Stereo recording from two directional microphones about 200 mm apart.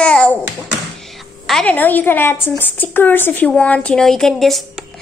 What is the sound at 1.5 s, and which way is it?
A woman's voice, 5° left (ahead or behind).